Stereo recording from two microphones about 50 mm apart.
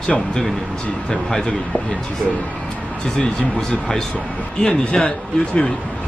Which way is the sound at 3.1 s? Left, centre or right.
Centre.